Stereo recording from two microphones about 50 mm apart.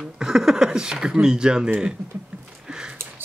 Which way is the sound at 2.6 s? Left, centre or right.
Centre.